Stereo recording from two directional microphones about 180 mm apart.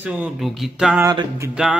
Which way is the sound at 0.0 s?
5° right (ahead or behind).